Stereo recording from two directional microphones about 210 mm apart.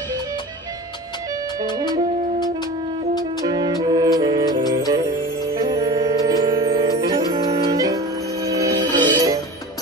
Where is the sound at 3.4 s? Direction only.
20° right (ahead or behind).